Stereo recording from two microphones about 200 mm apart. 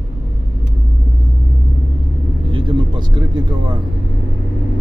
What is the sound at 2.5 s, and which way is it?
Vehicle, 20° right (ahead or behind).